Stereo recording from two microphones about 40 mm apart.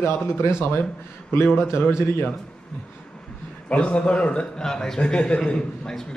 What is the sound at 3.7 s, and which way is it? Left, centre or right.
Speech, left.